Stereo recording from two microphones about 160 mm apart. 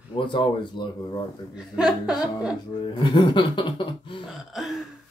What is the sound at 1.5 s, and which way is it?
Speech, 5° right (ahead or behind).